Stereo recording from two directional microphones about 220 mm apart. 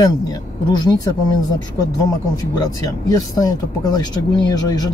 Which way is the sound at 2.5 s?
15° left (ahead or behind).